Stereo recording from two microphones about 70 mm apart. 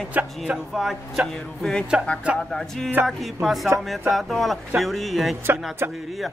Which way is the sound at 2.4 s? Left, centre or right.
Centre.